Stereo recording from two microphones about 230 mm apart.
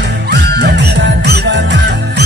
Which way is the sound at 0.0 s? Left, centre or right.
Right.